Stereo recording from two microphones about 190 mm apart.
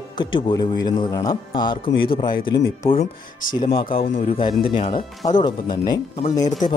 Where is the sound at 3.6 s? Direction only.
25° left (ahead or behind).